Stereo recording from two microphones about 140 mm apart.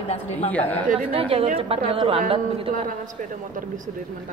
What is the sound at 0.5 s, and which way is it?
Speech, 10° left (ahead or behind).